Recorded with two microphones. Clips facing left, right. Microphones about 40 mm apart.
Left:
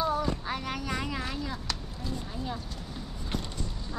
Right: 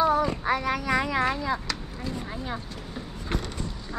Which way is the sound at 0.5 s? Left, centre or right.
Right.